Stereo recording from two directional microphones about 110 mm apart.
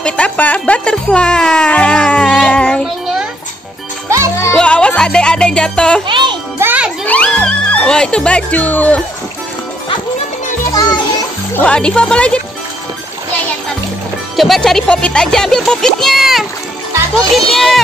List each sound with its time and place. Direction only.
0.0 s speech: 10° left (ahead or behind)
2.4 s music: 15° left (ahead or behind)
4.6 s music: 10° left (ahead or behind)
6.0 s music: 45° right (ahead or behind)
6.6 s jingle: 15° right (ahead or behind)
7.1 s speech: 10° left (ahead or behind)
10.7 s a child's voice: 35° left (ahead or behind)
11.5 s speech: 10° left (ahead or behind)
14.3 s a child's voice: centre (ahead or behind)
17.5 s a child's voice: centre (ahead or behind)